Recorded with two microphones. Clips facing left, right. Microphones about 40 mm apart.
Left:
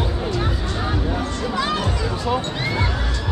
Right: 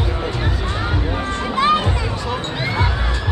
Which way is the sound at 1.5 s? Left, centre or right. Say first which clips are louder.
Right 7 dB; right.